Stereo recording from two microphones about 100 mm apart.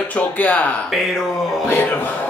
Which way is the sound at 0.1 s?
15° left (ahead or behind).